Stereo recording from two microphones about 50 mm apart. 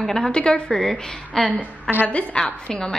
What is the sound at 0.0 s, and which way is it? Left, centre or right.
A woman's voice, centre.